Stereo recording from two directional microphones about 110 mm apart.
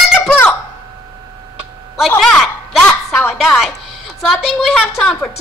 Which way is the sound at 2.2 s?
5° left (ahead or behind).